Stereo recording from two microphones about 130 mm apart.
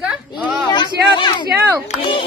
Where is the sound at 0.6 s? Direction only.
35° left (ahead or behind).